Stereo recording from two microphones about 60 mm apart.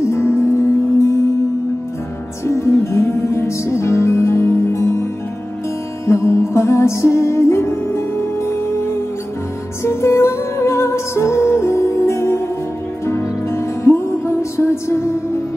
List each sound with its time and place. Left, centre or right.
0.0 s music: left
2.4 s music: left
6.0 s music: left
9.8 s music: left